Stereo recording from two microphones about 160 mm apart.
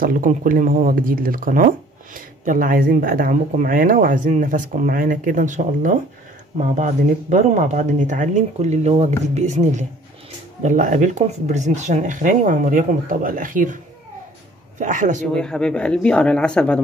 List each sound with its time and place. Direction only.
0.0 s speech: 60° right (ahead or behind)
14.8 s speech: 50° right (ahead or behind)
15.3 s speech: 5° left (ahead or behind)